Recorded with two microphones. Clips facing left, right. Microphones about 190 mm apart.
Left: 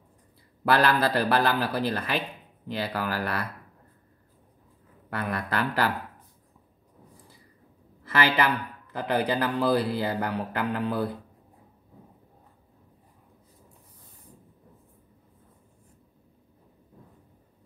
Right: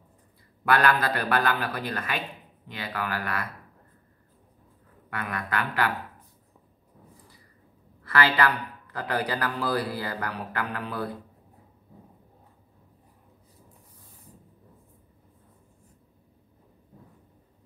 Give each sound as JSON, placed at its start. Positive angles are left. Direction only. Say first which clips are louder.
{"t": 0.7, "sound": "a man's voice", "louder": "left 1 dB", "side_deg": 30}
{"t": 5.1, "sound": "a man's voice", "louder": "left 2 dB", "side_deg": 35}
{"t": 8.0, "sound": "speech", "louder": "even", "side_deg": 20}